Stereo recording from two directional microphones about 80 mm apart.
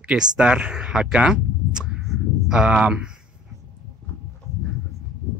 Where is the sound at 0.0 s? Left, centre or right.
Centre.